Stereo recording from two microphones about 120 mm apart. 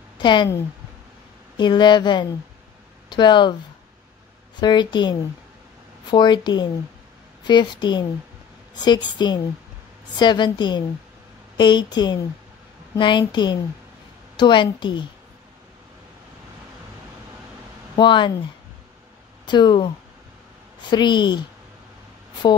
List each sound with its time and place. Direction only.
0.2 s a woman's voice: 40° left (ahead or behind)
1.6 s a woman's voice: 40° left (ahead or behind)
4.6 s a woman's voice: 40° left (ahead or behind)
17.9 s a woman's voice: 40° left (ahead or behind)
19.4 s a woman's voice: 40° left (ahead or behind)
20.9 s a woman's voice: 40° left (ahead or behind)